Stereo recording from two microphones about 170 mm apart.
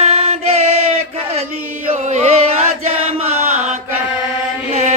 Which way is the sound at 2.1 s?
45° right (ahead or behind).